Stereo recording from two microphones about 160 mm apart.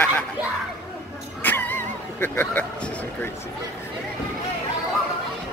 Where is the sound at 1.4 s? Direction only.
10° left (ahead or behind).